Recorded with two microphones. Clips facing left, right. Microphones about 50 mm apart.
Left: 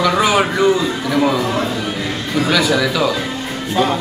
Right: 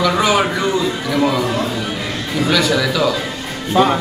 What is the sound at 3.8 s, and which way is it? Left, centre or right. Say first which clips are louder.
Speech: right 3 dB; centre.